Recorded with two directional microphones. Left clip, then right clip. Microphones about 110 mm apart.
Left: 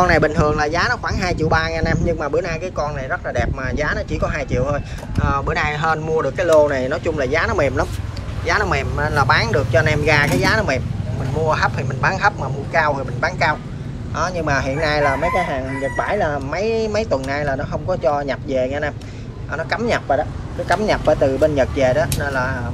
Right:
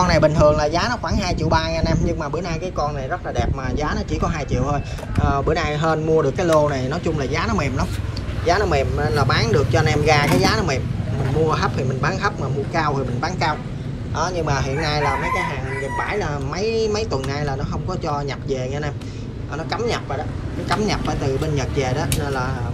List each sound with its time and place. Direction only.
0.0 s speech: 40° right (ahead or behind); by 6.5 s 20° right (ahead or behind)
6.7 s speech: 35° right (ahead or behind)
8.5 s speech: 5° right (ahead or behind)
9.3 s speech: 20° right (ahead or behind)
9.6 s speech: 35° right (ahead or behind)
11.4 s speech: 20° right (ahead or behind)
12.7 s speech: 30° right (ahead or behind); by 16.5 s 50° right (ahead or behind)
16.5 s speech: 35° right (ahead or behind)
20.6 s speech: 50° right (ahead or behind)
21.5 s speech: 35° right (ahead or behind)